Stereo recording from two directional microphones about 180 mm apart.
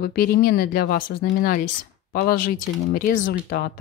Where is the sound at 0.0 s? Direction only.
60° left (ahead or behind).